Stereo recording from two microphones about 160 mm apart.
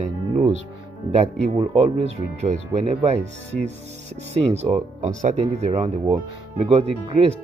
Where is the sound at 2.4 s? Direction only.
45° right (ahead or behind).